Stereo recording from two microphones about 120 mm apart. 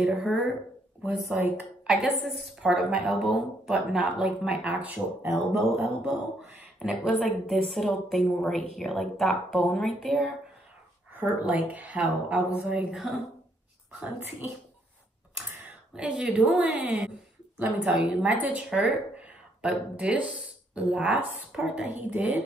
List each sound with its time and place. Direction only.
0.0 s a woman's voice: 5° right (ahead or behind)
1.9 s a woman's voice: centre (ahead or behind)
5.2 s speech: 25° right (ahead or behind)
6.6 s a woman's voice: 10° right (ahead or behind)
13.9 s a woman's voice: 15° right (ahead or behind)
15.6 s a woman's voice: 5° right (ahead or behind)